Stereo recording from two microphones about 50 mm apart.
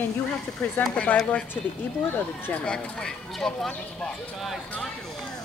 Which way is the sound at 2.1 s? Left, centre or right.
Left.